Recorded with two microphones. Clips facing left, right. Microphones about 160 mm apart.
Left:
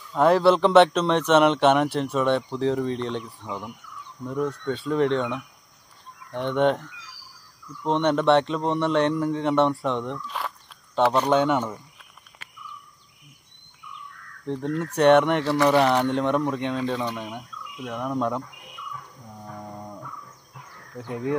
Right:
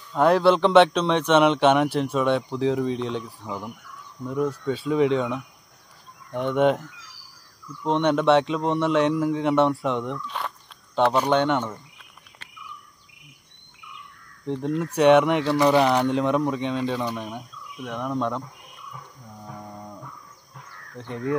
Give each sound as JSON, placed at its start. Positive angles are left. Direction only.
{"t": 0.1, "sound": "speech", "side_deg": 0}
{"t": 13.8, "sound": "a sound", "side_deg": -80}
{"t": 14.4, "sound": "speech", "side_deg": 0}
{"t": 21.0, "sound": "speech", "side_deg": 5}